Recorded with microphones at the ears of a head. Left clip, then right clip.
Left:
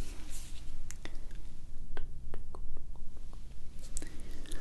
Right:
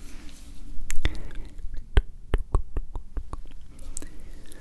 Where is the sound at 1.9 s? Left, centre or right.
Right.